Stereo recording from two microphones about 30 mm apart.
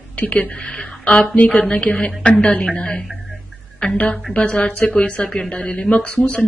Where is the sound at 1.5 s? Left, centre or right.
Left.